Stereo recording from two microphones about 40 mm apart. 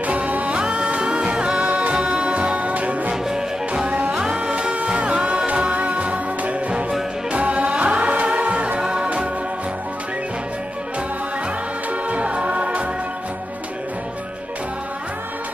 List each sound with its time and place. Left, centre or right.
0.0 s music: right
1.7 s music: right
3.1 s music: centre
3.8 s music: right
4.3 s music: right
8.7 s music: right
12.1 s music: right